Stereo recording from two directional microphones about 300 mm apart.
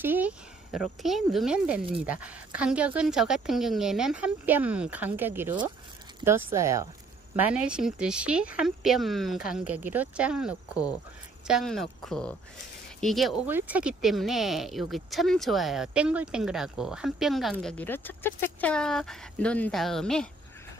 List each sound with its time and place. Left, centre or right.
0.0 s speech: centre